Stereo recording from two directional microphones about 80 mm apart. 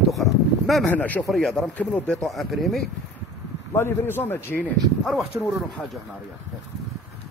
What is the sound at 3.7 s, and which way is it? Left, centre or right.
Speech, left.